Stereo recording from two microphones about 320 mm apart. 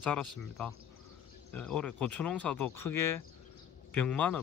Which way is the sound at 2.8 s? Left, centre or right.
Left.